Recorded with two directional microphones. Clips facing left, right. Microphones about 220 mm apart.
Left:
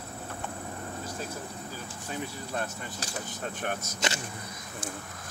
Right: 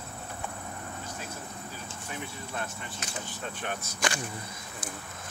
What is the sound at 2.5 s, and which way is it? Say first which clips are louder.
Speech: left 3 dB; 35° left (ahead or behind).